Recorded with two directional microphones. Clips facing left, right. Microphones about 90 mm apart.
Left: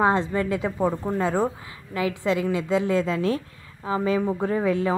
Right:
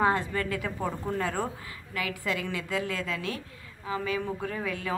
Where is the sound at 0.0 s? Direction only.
25° left (ahead or behind).